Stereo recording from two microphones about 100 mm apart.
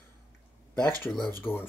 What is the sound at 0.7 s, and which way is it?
Speech, 15° left (ahead or behind).